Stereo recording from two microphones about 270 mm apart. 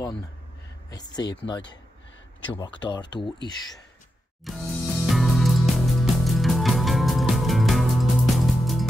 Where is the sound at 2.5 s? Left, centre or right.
Centre.